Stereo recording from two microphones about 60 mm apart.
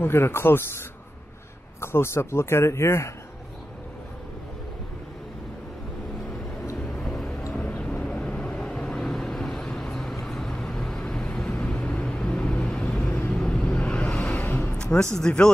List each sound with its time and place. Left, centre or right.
0.0 s speech: left
6.8 s vehicle: centre
14.3 s music: left
15.1 s speech: centre